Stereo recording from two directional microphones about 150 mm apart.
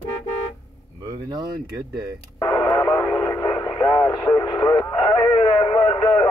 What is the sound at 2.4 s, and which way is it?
Radio, 25° left (ahead or behind).